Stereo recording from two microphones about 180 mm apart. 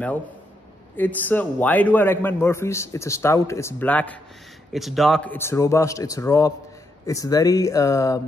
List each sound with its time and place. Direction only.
0.9 s a man's voice: 10° left (ahead or behind)